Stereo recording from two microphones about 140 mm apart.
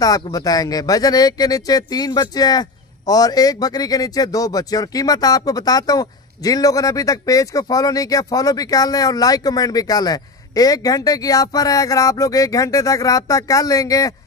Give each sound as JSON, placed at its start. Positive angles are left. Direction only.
{"t": 0.0, "sound": "speech", "side_deg": 25}